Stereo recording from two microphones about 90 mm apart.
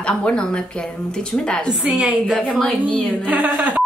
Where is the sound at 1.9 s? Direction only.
10° right (ahead or behind).